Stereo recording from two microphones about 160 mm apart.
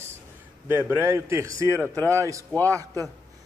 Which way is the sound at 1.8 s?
5° left (ahead or behind).